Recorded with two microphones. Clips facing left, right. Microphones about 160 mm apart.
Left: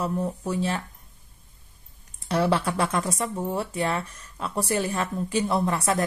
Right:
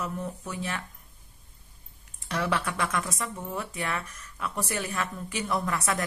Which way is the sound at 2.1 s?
30° left (ahead or behind).